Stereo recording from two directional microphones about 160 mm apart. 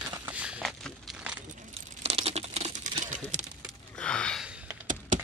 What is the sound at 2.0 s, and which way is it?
Crumpling, 40° right (ahead or behind).